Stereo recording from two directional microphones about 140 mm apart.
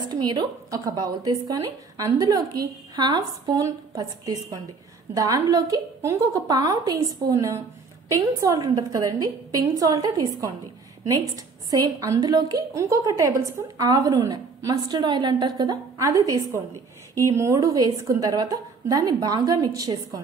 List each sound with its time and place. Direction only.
0.1 s a woman's voice: 30° right (ahead or behind)